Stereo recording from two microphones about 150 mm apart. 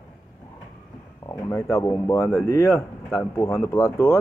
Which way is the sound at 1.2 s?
20° left (ahead or behind).